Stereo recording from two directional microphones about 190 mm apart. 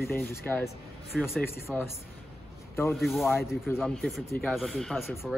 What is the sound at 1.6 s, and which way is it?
Speech, 15° left (ahead or behind).